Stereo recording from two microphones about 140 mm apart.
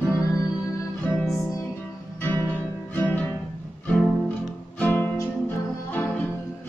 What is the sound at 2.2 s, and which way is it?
Music, 15° left (ahead or behind).